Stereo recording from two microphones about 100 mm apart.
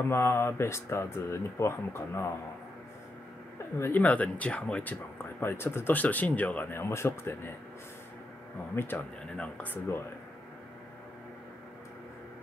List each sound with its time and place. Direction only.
0.1 s speech: 25° left (ahead or behind)
3.7 s speech: 25° left (ahead or behind)
8.7 s speech: 20° left (ahead or behind)